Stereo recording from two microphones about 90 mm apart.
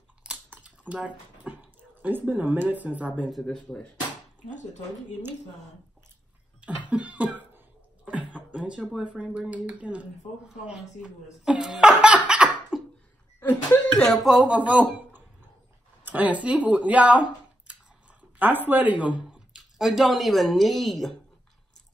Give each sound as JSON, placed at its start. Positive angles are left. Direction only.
{"t": 0.2, "sound": "typing", "side_deg": -10}
{"t": 0.6, "sound": "speech", "side_deg": -15}
{"t": 3.3, "sound": "a woman's voice", "side_deg": 0}
{"t": 6.6, "sound": "cough", "side_deg": -15}
{"t": 9.5, "sound": "speech", "side_deg": -15}
{"t": 13.4, "sound": "speech", "side_deg": 20}
{"t": 14.2, "sound": "a woman's voice", "side_deg": 0}
{"t": 14.5, "sound": "speech", "side_deg": -15}
{"t": 18.4, "sound": "speech", "side_deg": -20}
{"t": 19.2, "sound": "a sound", "side_deg": -5}
{"t": 20.5, "sound": "a woman's voice", "side_deg": 0}